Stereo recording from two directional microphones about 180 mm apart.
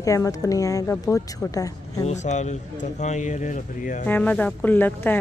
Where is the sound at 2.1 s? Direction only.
40° left (ahead or behind).